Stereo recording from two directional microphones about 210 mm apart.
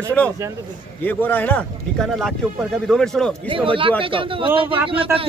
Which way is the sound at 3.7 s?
25° right (ahead or behind).